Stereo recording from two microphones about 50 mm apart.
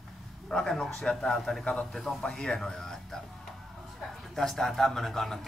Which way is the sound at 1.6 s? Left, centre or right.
Left.